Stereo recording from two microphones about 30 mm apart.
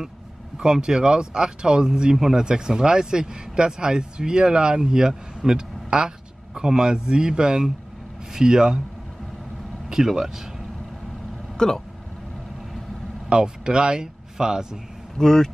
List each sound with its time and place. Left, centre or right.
0.6 s speech: right
2.1 s speech: centre
2.4 s speech: right
9.8 s speech: centre
11.5 s speech: centre
13.3 s speech: right
15.1 s speech: centre